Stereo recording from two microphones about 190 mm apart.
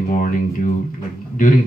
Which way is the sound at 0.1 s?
45° left (ahead or behind).